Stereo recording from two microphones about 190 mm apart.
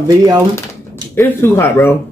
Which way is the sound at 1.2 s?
15° left (ahead or behind).